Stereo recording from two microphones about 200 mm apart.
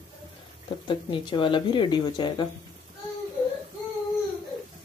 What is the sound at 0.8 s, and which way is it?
Speech, 25° left (ahead or behind).